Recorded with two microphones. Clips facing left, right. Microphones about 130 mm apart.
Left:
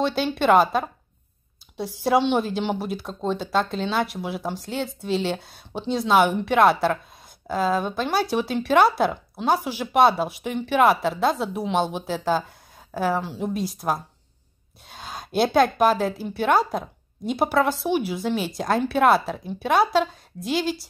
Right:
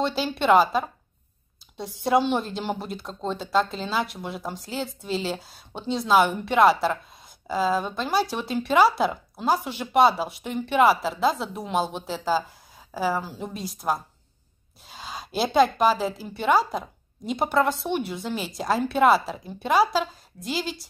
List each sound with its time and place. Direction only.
0.0 s speech: centre (ahead or behind)